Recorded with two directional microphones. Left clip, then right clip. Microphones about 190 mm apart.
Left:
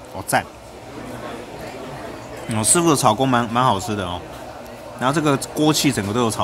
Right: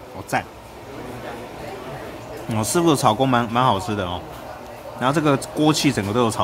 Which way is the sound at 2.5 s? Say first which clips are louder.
Left 1 dB; 5° right (ahead or behind).